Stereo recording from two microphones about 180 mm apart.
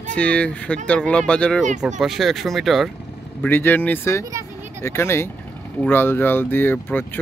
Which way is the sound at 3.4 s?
10° left (ahead or behind).